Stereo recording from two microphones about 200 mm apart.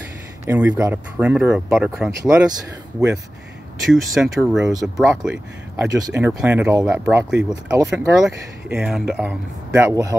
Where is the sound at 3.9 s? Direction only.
Centre (ahead or behind).